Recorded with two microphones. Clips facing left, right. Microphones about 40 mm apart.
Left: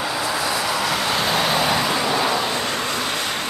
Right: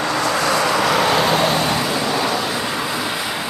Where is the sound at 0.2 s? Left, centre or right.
Right.